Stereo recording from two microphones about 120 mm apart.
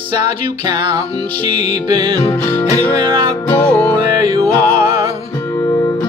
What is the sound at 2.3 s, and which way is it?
Music, 15° left (ahead or behind).